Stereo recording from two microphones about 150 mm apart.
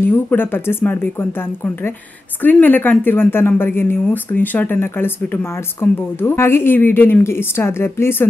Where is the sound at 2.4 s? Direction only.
10° left (ahead or behind).